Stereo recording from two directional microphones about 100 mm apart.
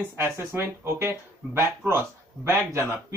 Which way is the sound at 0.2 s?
25° right (ahead or behind).